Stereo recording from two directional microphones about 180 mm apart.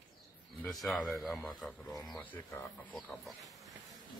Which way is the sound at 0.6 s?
Centre (ahead or behind).